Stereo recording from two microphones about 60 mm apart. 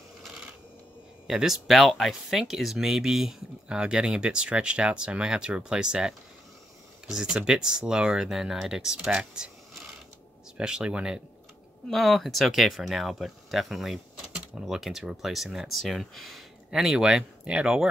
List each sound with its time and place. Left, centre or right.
1.2 s speech: centre
10.6 s speech: centre
11.9 s speech: centre
16.7 s speech: centre